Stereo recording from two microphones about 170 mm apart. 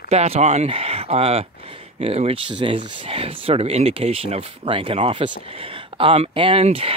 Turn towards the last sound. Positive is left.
turn(degrees=-35)  # may be behind; listen again after turning